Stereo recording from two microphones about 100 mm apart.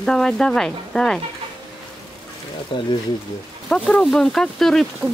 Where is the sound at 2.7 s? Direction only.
60° left (ahead or behind).